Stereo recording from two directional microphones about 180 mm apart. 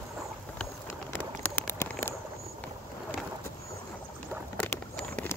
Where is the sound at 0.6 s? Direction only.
10° left (ahead or behind).